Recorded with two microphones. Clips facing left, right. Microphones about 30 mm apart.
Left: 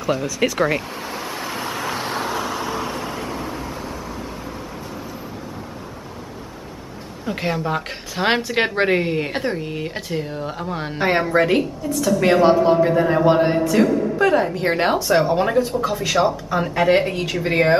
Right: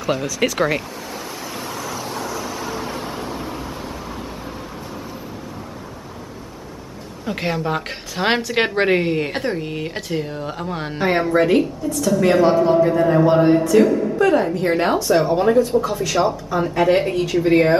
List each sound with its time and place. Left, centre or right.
0.0 s a woman's voice: centre
1.5 s vehicle: left
3.3 s vehicle: centre
7.2 s a woman's voice: centre
11.0 s a woman's voice: centre
12.4 s a man's voice: left
13.7 s a woman's voice: centre